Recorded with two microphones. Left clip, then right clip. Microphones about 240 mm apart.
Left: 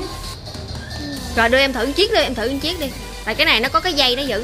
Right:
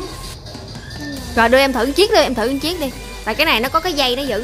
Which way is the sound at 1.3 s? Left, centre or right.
Centre.